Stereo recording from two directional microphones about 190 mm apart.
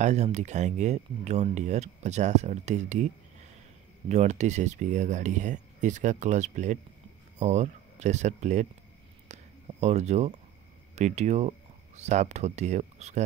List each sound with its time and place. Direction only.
0.0 s speech: 35° right (ahead or behind)
4.1 s speech: 35° right (ahead or behind)
9.3 s a sound: 35° right (ahead or behind)
11.0 s speech: 35° right (ahead or behind)